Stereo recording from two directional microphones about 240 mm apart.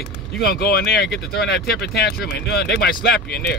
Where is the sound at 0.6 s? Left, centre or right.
Left.